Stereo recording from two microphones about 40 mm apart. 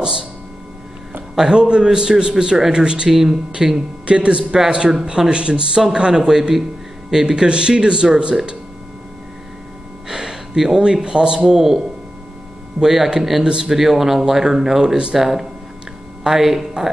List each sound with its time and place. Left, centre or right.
0.0 s speech: centre
1.3 s speech: centre
3.1 s speech: centre
4.0 s speech: right
6.1 s speech: centre
10.0 s gasp: centre
11.1 s speech: right
12.8 s speech: centre
13.4 s speech: centre
13.7 s speech: centre